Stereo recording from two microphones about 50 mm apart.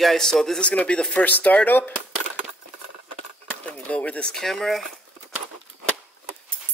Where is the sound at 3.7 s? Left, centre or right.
Left.